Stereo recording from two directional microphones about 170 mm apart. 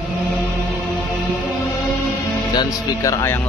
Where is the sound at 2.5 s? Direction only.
20° left (ahead or behind).